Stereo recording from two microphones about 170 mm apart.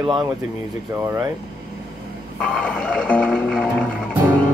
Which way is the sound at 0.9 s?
15° right (ahead or behind).